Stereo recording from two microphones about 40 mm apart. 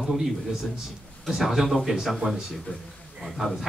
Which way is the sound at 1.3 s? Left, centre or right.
Centre.